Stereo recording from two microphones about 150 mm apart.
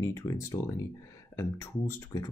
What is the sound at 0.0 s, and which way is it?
Speech, 20° left (ahead or behind).